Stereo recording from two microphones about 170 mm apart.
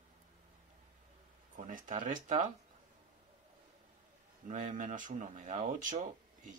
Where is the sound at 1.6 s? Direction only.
50° right (ahead or behind).